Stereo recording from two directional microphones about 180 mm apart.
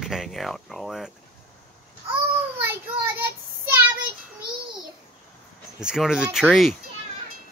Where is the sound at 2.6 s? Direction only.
10° right (ahead or behind).